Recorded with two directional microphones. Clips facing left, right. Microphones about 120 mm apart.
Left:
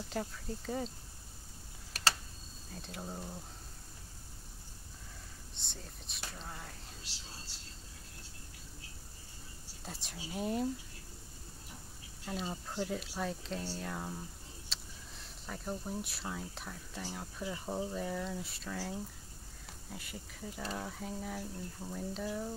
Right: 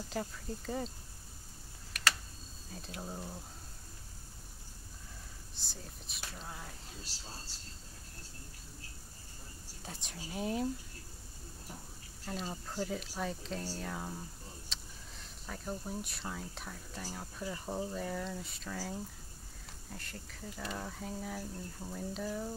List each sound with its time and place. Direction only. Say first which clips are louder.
0.1 s speech: even; centre (ahead or behind)
2.0 s a sound: even; 35° left (ahead or behind)
2.7 s speech: even; centre (ahead or behind)
5.5 s speech: right 1 dB; centre (ahead or behind)
7.0 s speech: right 3 dB; 40° right (ahead or behind)
9.8 s speech: left 1 dB; centre (ahead or behind)
12.3 s speech: left 1 dB; centre (ahead or behind)